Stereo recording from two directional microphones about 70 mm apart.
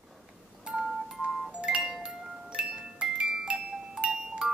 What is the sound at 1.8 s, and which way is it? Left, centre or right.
Music, centre.